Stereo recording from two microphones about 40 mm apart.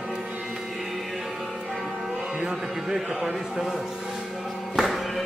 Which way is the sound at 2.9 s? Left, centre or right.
Centre.